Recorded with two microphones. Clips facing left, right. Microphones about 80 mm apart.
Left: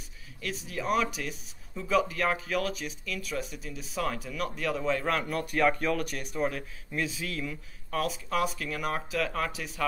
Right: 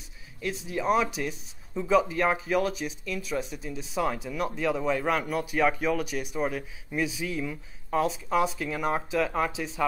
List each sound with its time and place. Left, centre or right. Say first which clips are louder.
0.4 s speech: right 4 dB; centre